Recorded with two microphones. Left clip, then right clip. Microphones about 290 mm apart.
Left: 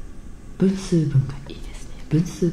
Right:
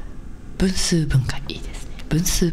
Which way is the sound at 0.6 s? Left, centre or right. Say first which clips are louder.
Even; right.